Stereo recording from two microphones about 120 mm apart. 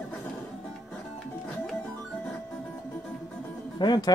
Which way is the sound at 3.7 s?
35° left (ahead or behind).